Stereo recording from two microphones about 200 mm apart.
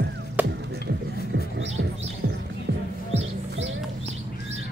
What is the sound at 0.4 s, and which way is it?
Music, 10° right (ahead or behind).